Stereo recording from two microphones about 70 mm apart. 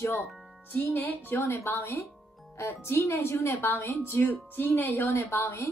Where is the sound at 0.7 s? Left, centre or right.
Left.